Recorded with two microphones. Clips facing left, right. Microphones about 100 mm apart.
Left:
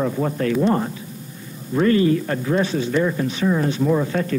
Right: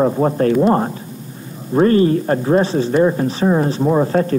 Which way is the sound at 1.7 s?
35° right (ahead or behind).